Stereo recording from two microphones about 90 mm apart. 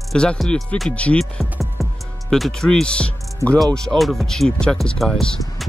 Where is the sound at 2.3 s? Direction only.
Centre (ahead or behind).